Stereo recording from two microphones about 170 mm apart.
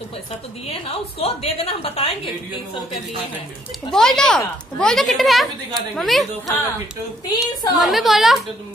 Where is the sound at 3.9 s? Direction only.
5° left (ahead or behind).